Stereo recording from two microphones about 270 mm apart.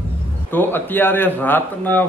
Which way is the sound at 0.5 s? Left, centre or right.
Centre.